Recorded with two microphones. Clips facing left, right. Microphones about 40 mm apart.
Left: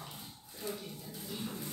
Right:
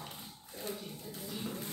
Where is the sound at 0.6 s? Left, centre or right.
Right.